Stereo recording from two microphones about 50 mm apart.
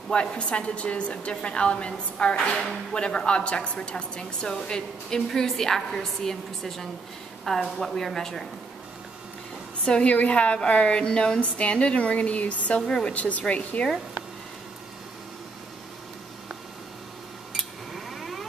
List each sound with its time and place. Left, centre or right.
0.1 s a woman's voice: centre
2.5 s speech: centre
2.9 s a woman's voice: centre
9.8 s a woman's voice: left
12.8 s a woman's voice: centre
13.1 s a woman's voice: left
17.9 s a sound: centre